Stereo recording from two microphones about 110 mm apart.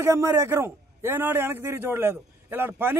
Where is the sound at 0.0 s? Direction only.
25° right (ahead or behind).